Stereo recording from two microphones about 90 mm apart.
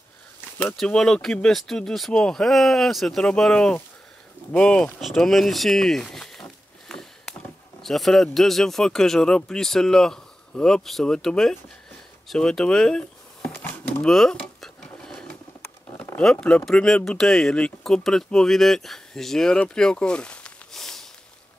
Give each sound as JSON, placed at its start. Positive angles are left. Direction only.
{"t": 0.7, "sound": "speech", "side_deg": 5}
{"t": 5.0, "sound": "a sound", "side_deg": 5}
{"t": 7.8, "sound": "speech", "side_deg": 5}
{"t": 13.5, "sound": "a sound", "side_deg": 20}
{"t": 14.0, "sound": "dishes", "side_deg": 5}
{"t": 16.2, "sound": "speech", "side_deg": 10}